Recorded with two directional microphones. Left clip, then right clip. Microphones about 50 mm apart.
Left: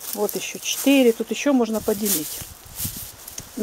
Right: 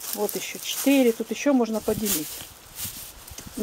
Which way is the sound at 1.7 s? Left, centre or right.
Left.